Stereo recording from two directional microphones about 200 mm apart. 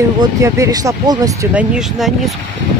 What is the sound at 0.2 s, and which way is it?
Speech, 15° right (ahead or behind).